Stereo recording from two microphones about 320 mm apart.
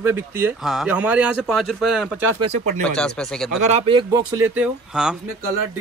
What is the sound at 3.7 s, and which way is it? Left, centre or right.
Speech, centre.